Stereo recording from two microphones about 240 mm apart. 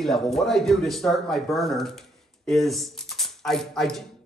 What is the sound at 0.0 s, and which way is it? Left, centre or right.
A man's voice, centre.